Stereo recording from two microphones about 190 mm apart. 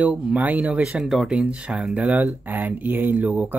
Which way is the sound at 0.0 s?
5° right (ahead or behind).